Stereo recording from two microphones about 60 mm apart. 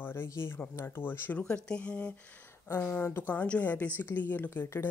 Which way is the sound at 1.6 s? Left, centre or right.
Centre.